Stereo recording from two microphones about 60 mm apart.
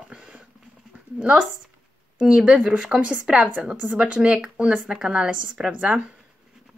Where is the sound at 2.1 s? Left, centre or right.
Centre; by 4.0 s right.